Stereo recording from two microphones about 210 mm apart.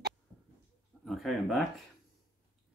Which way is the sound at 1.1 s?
Centre (ahead or behind).